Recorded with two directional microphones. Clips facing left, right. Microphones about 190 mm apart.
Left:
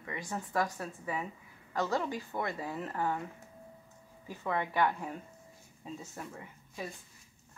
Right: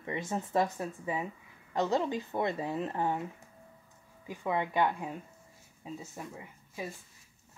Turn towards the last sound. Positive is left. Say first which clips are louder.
# right 1 dB
turn(degrees=-5)  # may be behind; listen again after turning